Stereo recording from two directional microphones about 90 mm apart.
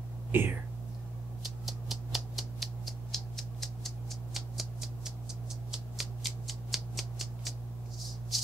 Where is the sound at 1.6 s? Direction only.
Centre (ahead or behind).